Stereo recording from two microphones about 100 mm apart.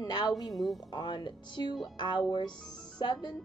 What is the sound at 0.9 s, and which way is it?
A woman's voice, 50° left (ahead or behind).